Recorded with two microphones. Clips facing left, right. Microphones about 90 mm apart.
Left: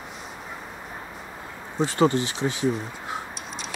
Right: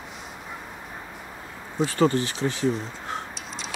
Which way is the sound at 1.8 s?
20° left (ahead or behind).